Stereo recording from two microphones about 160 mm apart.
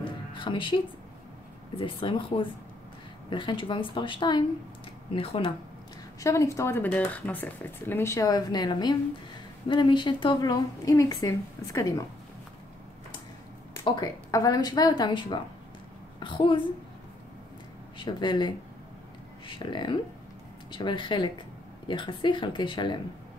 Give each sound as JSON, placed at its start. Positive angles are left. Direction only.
{"t": 0.0, "sound": "music", "side_deg": 30}
{"t": 1.8, "sound": "speech", "side_deg": 30}
{"t": 6.2, "sound": "speech", "side_deg": 20}
{"t": 13.9, "sound": "speech", "side_deg": 25}
{"t": 17.9, "sound": "speech", "side_deg": 30}